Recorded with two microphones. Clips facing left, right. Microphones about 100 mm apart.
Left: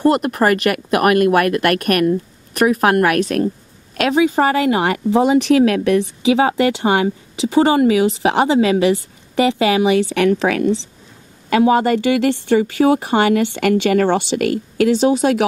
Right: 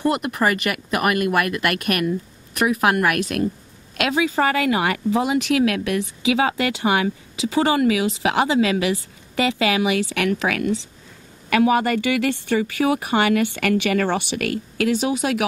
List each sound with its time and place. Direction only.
0.0 s speech: 50° left (ahead or behind); by 15.4 s 30° left (ahead or behind)